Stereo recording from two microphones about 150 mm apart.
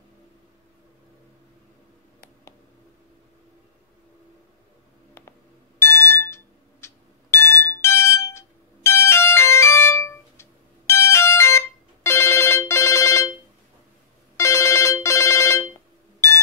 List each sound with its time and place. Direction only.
5.8 s alarm: 15° left (ahead or behind)
7.8 s music: 15° left (ahead or behind)
14.3 s telephone bell ringing: 20° left (ahead or behind)